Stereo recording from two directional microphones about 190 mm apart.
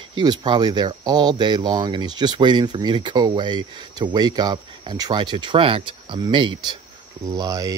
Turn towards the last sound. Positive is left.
turn(degrees=-20)  # may be behind; listen again after turning